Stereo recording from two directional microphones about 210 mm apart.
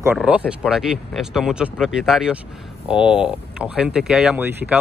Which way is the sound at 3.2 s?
5° right (ahead or behind).